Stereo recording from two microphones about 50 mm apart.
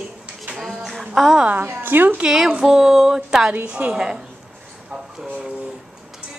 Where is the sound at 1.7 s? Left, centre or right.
Right.